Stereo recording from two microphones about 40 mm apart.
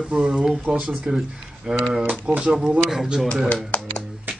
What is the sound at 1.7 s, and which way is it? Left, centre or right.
Speech, right.